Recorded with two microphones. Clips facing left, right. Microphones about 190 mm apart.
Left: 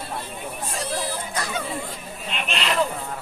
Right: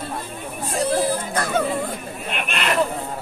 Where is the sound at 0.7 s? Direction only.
55° right (ahead or behind).